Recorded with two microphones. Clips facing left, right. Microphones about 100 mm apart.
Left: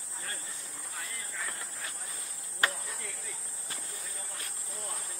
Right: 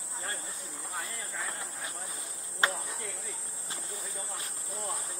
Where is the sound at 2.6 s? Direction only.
25° right (ahead or behind).